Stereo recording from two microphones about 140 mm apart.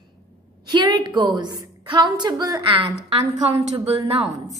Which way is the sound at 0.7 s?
30° right (ahead or behind).